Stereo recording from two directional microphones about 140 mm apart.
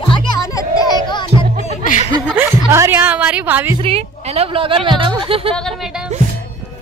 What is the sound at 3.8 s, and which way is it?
Speech, 45° right (ahead or behind).